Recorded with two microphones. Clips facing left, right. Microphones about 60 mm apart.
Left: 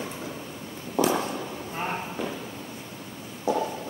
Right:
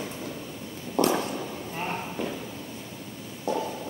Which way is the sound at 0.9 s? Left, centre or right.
Centre.